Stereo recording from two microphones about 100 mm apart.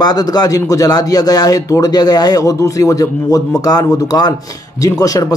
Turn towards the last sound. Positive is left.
turn(degrees=35)  # may be behind; listen again after turning